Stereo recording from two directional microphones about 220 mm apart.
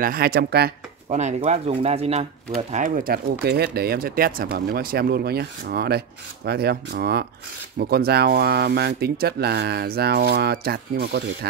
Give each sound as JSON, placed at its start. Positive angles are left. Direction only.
{"t": 0.0, "sound": "speech", "side_deg": -45}
{"t": 1.1, "sound": "speech", "side_deg": -30}